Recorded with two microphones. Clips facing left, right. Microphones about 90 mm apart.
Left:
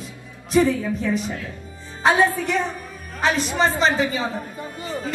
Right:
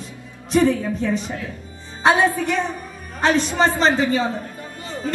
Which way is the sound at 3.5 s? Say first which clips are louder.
Right 2 dB; 35° right (ahead or behind).